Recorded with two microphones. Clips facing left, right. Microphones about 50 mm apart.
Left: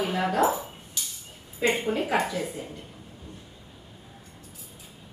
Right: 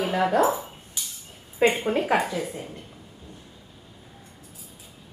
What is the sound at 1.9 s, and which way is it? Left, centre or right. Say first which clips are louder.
Speech: right 4 dB; right.